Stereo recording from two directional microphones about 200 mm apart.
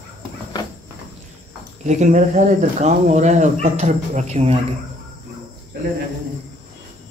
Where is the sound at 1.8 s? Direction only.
35° right (ahead or behind).